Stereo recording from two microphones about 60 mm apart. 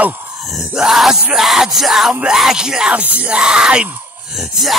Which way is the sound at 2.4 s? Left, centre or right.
Centre.